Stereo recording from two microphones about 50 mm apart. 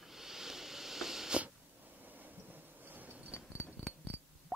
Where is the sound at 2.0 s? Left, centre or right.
Right.